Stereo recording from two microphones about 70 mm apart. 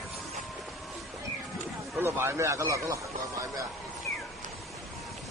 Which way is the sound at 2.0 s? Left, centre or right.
Right.